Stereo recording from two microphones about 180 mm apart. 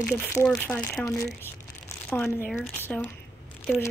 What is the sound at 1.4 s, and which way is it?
Crumpling, 15° left (ahead or behind).